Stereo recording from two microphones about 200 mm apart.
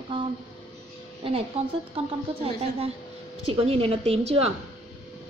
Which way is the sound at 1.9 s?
30° right (ahead or behind).